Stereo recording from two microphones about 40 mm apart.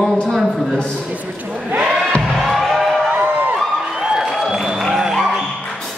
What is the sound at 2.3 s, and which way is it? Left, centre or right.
Music, centre.